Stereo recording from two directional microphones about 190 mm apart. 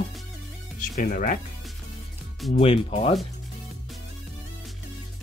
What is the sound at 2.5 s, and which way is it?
Speech, 30° left (ahead or behind).